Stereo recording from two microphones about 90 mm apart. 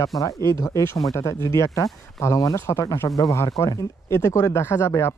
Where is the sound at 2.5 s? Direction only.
30° left (ahead or behind).